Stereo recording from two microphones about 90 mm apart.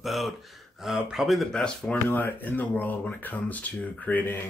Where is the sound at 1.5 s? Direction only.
10° left (ahead or behind).